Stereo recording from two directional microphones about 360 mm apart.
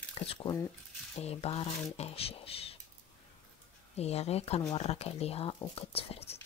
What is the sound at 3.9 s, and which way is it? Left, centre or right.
Speech, centre.